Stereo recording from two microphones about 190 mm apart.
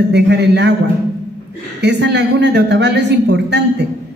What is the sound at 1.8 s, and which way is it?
A man's voice, 60° right (ahead or behind).